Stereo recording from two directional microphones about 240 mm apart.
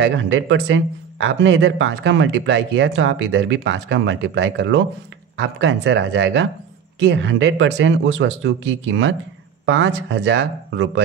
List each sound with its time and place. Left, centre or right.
0.0 s speech: right